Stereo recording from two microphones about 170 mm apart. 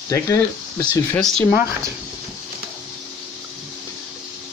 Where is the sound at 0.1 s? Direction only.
20° left (ahead or behind).